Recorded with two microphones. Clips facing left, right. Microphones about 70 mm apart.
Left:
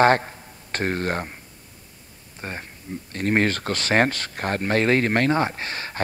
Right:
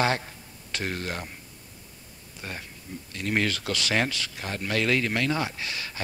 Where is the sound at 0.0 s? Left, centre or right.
Left.